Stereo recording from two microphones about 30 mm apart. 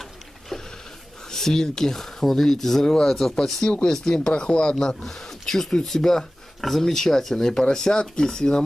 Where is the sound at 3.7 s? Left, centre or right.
Left.